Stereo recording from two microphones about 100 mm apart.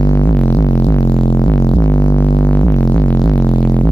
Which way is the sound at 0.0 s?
35° left (ahead or behind).